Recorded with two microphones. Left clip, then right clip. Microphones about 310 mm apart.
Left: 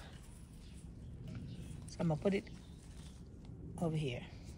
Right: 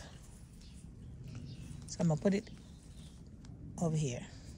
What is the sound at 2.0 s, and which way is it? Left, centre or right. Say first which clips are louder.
Speech: right 2 dB; right.